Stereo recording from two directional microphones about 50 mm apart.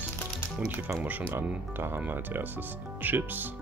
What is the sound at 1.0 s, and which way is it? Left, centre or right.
Speech, right.